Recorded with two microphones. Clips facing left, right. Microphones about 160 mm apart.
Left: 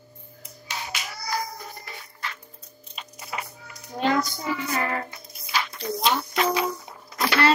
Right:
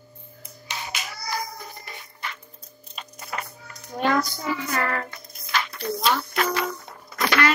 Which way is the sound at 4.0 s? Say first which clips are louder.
Right 1 dB; 20° left (ahead or behind).